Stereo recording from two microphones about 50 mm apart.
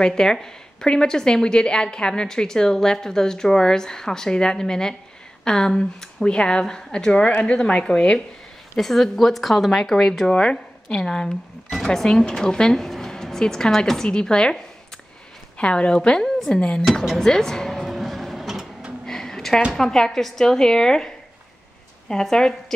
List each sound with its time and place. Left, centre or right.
0.0 s a woman's voice: centre
8.7 s a woman's voice: centre
17.8 s music: centre
19.0 s a sound: centre
19.7 s speech: centre
22.1 s speech: centre